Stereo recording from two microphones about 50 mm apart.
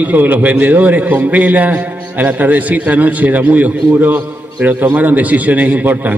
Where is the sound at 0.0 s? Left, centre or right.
Right.